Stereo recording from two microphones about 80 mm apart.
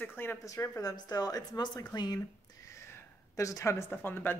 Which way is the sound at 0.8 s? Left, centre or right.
Left.